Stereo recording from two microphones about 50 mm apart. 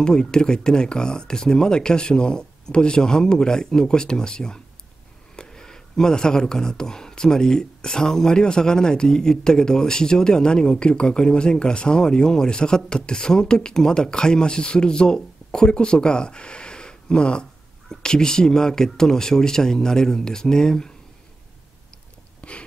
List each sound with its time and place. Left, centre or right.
0.0 s speech: centre
22.4 s biting: left